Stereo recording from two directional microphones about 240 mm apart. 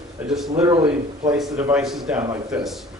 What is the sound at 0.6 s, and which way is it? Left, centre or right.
A woman's voice, centre.